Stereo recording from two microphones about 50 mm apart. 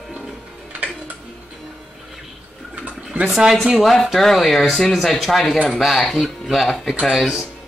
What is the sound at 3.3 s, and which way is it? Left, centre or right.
Speech, centre.